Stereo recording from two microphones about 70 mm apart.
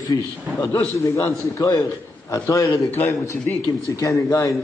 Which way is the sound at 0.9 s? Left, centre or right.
Left.